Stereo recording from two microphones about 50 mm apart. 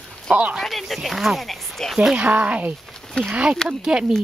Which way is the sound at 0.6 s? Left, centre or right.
Centre.